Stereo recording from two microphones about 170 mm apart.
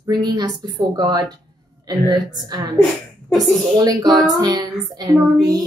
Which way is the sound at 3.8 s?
20° right (ahead or behind).